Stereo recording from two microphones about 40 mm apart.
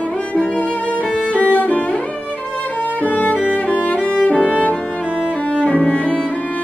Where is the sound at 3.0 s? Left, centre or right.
Left.